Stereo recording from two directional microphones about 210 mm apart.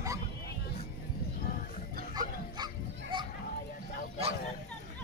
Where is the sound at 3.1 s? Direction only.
20° right (ahead or behind).